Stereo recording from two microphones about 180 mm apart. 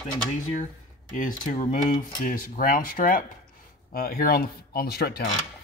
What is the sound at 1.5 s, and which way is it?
Speech, 45° left (ahead or behind).